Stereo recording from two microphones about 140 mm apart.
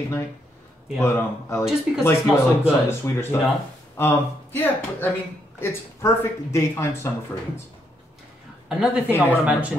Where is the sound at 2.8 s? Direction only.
20° left (ahead or behind).